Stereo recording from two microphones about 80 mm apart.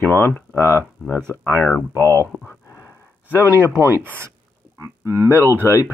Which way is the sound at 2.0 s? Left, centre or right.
Left.